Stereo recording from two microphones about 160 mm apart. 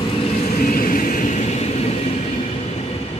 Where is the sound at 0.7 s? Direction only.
60° left (ahead or behind).